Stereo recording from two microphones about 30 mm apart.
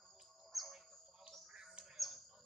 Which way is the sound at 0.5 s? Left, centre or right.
Centre.